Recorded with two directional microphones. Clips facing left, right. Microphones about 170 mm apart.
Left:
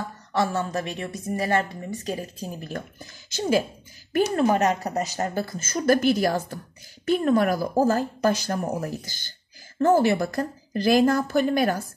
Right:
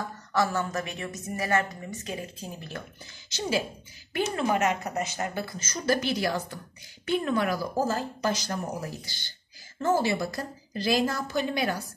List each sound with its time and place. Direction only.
0.3 s speech: 25° left (ahead or behind)
4.1 s a woman's voice: 40° left (ahead or behind)